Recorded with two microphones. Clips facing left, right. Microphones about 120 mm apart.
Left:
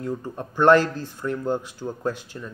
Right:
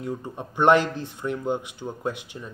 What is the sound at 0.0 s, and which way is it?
A man's voice, 15° right (ahead or behind).